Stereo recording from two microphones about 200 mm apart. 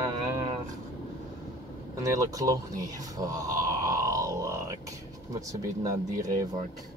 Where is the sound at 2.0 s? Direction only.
15° right (ahead or behind).